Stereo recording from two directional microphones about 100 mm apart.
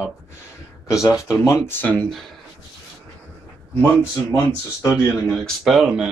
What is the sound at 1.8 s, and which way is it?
Speech, 15° left (ahead or behind).